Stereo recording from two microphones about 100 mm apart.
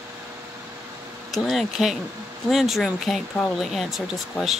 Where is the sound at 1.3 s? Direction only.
Centre (ahead or behind).